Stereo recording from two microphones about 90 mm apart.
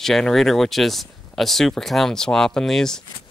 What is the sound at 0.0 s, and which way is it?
Speech, 5° left (ahead or behind).